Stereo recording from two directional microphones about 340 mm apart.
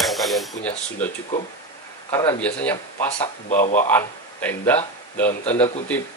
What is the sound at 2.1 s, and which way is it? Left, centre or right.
Speech, centre.